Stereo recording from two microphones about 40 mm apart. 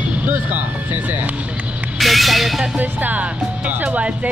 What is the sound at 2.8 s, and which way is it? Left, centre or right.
Music, right.